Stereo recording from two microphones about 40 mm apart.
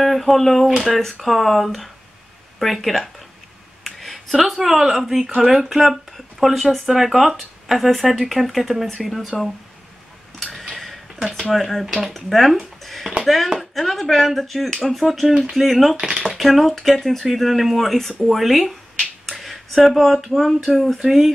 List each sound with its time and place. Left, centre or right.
0.0 s a sound: centre
0.8 s speech: centre
10.7 s a sound: centre
11.5 s speech: centre
16.0 s speech: centre
16.3 s speech: centre
18.4 s speech: centre